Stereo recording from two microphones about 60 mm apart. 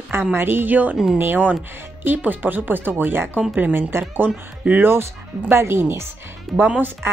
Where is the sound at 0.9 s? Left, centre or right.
Centre.